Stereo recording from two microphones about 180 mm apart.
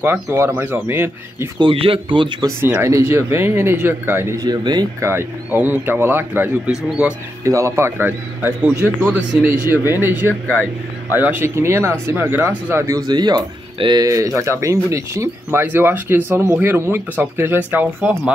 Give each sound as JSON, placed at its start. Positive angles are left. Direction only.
{"t": 0.0, "sound": "speech", "side_deg": -15}
{"t": 1.6, "sound": "a man's voice", "side_deg": -30}
{"t": 2.6, "sound": "speech", "side_deg": -15}
{"t": 5.1, "sound": "speech", "side_deg": -10}
{"t": 7.4, "sound": "speech", "side_deg": -15}
{"t": 10.4, "sound": "speech", "side_deg": 10}
{"t": 11.1, "sound": "speech", "side_deg": -10}